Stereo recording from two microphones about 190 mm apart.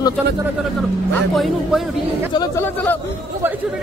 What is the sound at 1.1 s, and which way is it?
Speech, centre (ahead or behind).